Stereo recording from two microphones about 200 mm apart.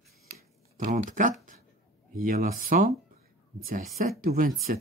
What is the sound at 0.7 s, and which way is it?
Speech, 40° right (ahead or behind).